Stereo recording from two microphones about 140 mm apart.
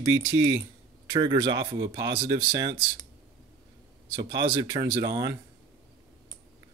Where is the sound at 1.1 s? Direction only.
30° right (ahead or behind).